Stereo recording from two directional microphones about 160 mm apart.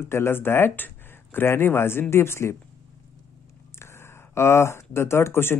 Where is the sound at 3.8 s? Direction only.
15° left (ahead or behind).